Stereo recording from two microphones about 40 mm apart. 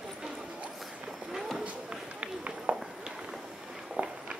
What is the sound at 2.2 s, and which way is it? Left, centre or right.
Run, right.